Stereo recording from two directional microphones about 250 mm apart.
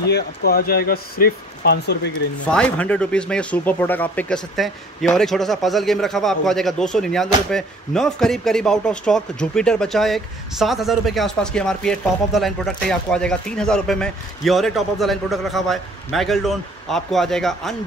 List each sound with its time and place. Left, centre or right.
0.1 s speech: left
2.4 s a man's voice: centre